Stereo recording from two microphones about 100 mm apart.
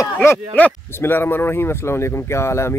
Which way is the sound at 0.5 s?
20° left (ahead or behind).